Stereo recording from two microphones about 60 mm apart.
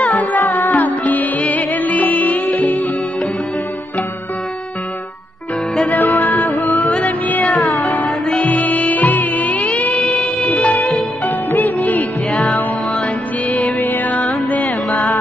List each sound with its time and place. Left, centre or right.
0.4 s music: left
0.8 s music: left
5.9 s music: left
6.3 s music: centre
7.1 s music: left
7.4 s music: centre
8.5 s music: left
9.9 s music: centre
11.5 s music: left
12.3 s music: centre